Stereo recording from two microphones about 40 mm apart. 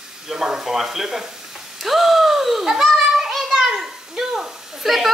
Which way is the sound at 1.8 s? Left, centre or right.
Centre.